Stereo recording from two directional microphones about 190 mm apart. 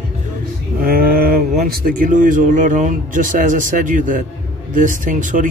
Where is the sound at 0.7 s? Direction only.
50° right (ahead or behind).